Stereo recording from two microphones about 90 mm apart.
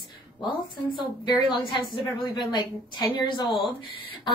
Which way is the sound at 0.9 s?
55° left (ahead or behind).